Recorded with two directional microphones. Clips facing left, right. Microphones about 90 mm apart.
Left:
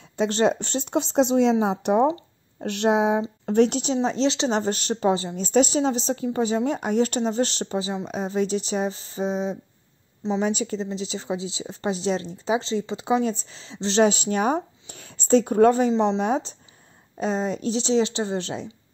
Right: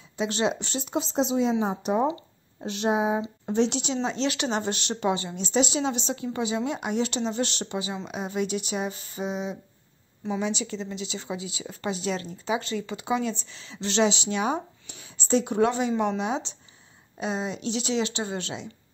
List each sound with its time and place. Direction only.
0.2 s a woman's voice: 45° left (ahead or behind); by 3.2 s 70° left (ahead or behind)
3.4 s speech: 50° left (ahead or behind)
15.9 s speech: 25° left (ahead or behind)
16.2 s speech: 45° left (ahead or behind)